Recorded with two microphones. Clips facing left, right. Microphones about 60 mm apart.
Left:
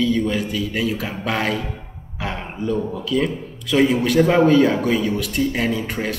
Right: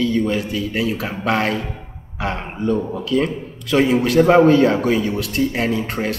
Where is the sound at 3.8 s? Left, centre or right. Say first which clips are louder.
Right 5 dB; right.